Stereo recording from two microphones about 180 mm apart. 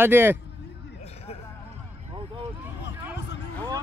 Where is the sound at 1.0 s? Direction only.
35° left (ahead or behind).